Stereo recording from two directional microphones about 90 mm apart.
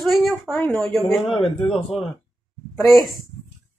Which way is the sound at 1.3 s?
90° left.